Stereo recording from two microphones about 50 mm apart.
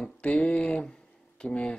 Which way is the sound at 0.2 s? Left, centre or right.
Left.